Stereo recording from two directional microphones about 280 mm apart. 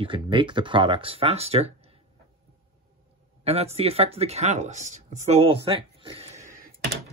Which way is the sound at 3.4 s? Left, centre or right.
Right.